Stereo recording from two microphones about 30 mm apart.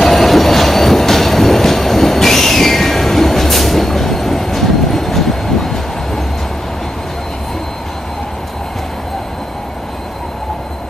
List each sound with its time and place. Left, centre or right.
0.1 s train: centre